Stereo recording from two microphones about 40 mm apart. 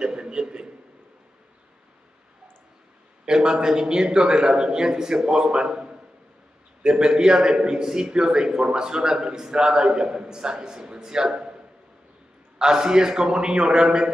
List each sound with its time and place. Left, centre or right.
0.0 s a sound: right
3.3 s a man's voice: centre
12.5 s a man's voice: centre